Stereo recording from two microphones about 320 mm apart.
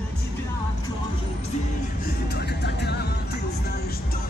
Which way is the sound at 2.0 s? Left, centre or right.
Left.